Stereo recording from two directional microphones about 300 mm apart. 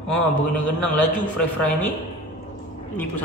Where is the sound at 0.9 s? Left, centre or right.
Centre.